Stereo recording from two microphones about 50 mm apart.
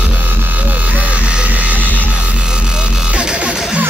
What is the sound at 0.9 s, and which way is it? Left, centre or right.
Music, right.